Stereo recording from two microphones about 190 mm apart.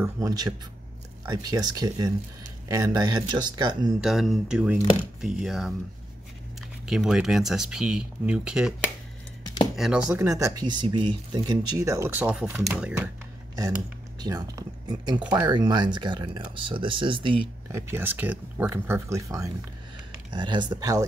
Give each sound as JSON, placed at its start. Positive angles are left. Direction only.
{"t": 0.0, "sound": "speech", "side_deg": -20}
{"t": 4.0, "sound": "speech", "side_deg": 0}
{"t": 6.9, "sound": "speech", "side_deg": 0}
{"t": 12.7, "sound": "speech", "side_deg": -5}
{"t": 14.2, "sound": "speech", "side_deg": -20}
{"t": 17.6, "sound": "speech", "side_deg": -15}